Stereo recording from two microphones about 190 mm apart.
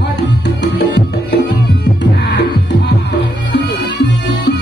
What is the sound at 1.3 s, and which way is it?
Music, 65° left (ahead or behind).